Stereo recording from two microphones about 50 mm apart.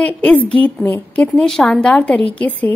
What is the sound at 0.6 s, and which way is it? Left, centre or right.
Speech, left.